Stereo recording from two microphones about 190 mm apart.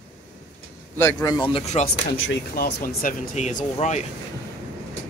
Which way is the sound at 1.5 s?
35° left (ahead or behind).